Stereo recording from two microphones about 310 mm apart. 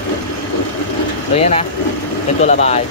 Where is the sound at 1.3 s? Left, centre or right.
Centre.